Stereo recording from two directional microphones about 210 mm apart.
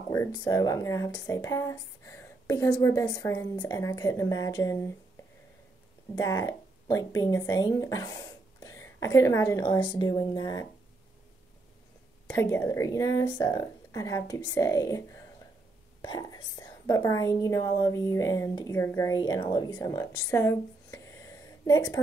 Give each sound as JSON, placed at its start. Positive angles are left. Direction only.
{"t": 0.1, "sound": "speech", "side_deg": 15}
{"t": 6.1, "sound": "speech", "side_deg": 15}
{"t": 12.3, "sound": "speech", "side_deg": 15}